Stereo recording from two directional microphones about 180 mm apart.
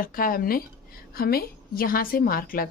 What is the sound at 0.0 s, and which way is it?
A woman's voice, 50° left (ahead or behind).